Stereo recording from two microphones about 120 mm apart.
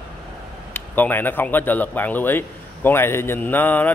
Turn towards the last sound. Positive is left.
turn(degrees=15)  # may be behind; listen again after turning